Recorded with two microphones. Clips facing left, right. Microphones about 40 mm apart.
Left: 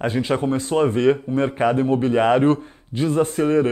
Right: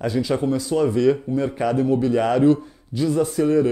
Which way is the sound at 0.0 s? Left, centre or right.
Left.